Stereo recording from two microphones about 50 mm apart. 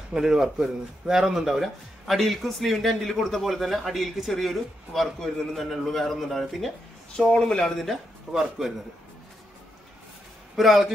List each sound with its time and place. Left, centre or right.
0.1 s a man's voice: centre
7.8 s a man's voice: centre
10.5 s a man's voice: centre